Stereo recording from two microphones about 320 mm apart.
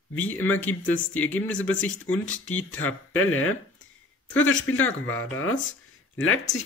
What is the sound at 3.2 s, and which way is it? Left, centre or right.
Speech, left.